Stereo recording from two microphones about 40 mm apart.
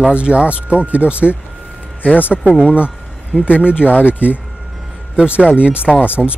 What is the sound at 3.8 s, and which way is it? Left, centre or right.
Speech, left.